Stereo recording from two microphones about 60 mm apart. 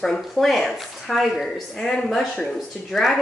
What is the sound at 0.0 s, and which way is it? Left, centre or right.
A woman's voice, centre.